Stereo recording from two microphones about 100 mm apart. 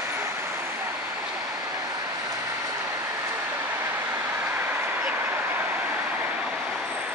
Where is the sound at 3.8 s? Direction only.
25° right (ahead or behind).